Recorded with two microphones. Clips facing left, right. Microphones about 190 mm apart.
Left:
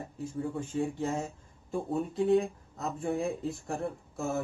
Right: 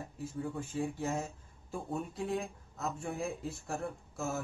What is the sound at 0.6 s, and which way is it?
Speech, 10° right (ahead or behind).